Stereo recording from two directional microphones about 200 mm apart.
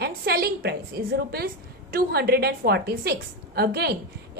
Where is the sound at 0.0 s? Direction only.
50° right (ahead or behind).